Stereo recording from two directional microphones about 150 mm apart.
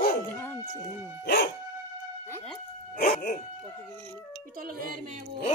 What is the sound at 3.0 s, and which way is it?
Dog, 80° left.